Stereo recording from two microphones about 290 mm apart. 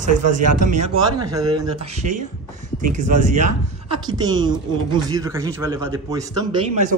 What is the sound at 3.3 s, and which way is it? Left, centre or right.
A man's voice, right.